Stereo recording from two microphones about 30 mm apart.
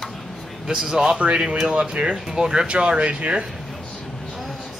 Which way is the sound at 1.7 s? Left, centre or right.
Right.